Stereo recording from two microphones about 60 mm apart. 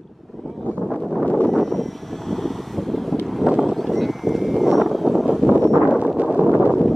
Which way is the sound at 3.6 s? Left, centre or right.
Centre.